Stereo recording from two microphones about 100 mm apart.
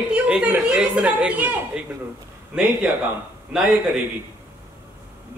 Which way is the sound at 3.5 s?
5° right (ahead or behind).